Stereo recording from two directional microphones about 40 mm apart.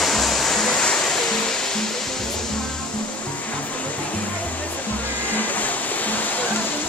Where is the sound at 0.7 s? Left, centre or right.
Left.